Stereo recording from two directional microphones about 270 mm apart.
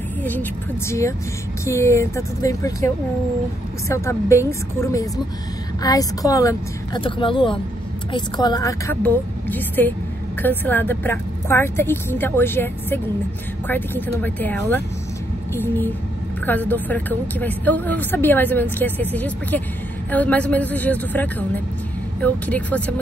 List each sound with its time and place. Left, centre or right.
0.8 s a woman's voice: centre
3.9 s a woman's voice: centre